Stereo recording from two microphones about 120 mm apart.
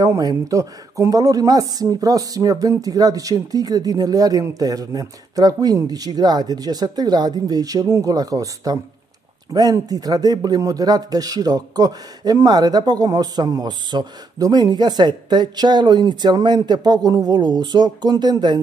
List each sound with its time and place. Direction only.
0.0 s speech: 30° right (ahead or behind)